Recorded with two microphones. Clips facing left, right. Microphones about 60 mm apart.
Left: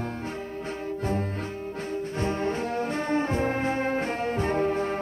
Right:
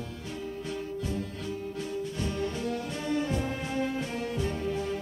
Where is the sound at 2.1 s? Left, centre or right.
Left.